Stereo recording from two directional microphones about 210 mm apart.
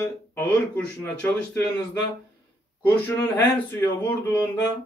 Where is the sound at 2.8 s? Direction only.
10° left (ahead or behind).